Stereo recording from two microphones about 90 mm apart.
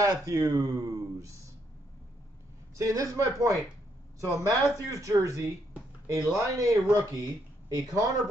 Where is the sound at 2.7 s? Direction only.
35° right (ahead or behind).